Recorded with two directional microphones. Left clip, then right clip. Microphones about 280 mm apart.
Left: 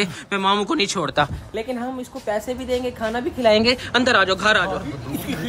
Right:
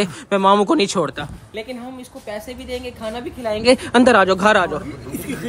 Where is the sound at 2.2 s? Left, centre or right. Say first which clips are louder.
Left 6 dB; centre.